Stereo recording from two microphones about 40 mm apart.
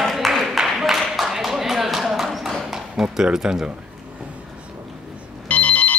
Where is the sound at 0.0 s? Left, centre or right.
Centre.